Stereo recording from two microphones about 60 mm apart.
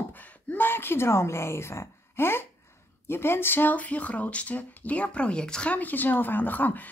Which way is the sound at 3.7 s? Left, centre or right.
Left.